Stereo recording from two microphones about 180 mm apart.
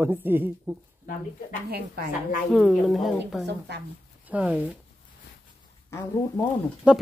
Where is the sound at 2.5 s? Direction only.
5° right (ahead or behind).